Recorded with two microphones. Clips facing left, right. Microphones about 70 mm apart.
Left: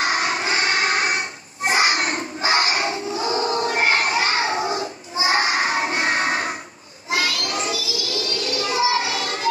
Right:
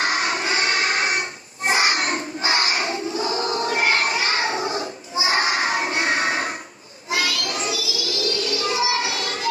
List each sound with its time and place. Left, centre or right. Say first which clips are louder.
0.1 s a sound: left 1 dB; left
5.2 s crowd: left 1 dB; left
7.1 s child singing: left 1 dB; left
8.3 s music: right 1 dB; left